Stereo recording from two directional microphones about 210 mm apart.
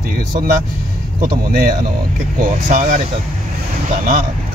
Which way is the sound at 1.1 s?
40° right (ahead or behind).